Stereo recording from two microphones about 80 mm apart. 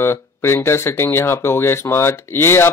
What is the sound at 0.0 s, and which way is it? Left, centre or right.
Speech, left.